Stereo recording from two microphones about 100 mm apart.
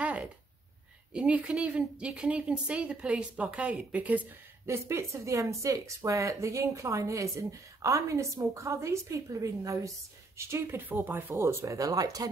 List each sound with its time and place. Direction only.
0.0 s a sound: 15° right (ahead or behind)
1.1 s a woman's voice: 10° right (ahead or behind)
4.6 s speech: 25° right (ahead or behind)
11.3 s speech: 30° right (ahead or behind)